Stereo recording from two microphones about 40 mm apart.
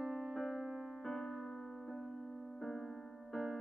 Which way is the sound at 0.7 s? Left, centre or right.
Centre.